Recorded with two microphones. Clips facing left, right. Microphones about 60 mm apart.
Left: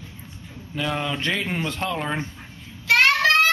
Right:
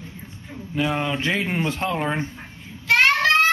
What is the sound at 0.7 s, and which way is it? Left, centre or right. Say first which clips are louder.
Speech: right 3 dB; centre.